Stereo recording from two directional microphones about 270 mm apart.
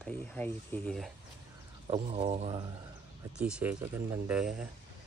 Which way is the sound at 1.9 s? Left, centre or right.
Right.